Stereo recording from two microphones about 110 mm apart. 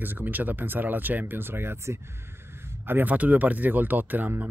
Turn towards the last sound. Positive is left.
turn(degrees=-15)  # may be behind; listen again after turning